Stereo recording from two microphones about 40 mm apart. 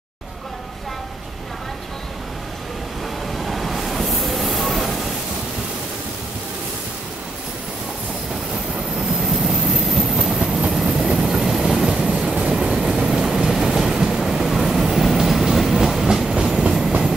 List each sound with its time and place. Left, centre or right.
3.3 s train: centre
9.4 s train: centre
16.3 s train: right